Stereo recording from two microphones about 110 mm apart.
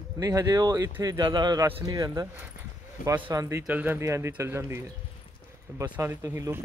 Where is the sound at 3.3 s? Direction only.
25° right (ahead or behind).